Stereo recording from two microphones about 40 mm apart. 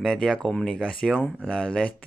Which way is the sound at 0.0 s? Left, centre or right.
Centre.